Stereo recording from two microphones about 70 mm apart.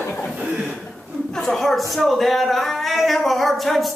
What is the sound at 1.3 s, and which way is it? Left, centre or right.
Speech, centre.